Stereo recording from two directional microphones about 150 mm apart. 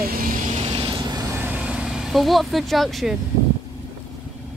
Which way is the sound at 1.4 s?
10° right (ahead or behind).